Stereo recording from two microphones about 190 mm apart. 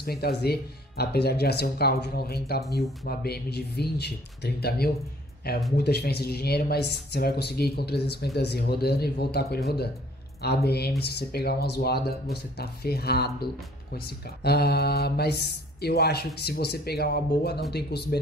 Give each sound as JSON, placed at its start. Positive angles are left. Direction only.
{"t": 0.0, "sound": "speech", "side_deg": 55}